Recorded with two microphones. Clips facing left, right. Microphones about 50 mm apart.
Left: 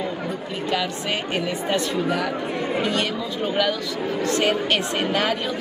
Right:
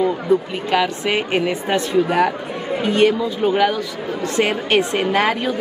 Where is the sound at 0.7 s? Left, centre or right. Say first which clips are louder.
Right 6 dB; right.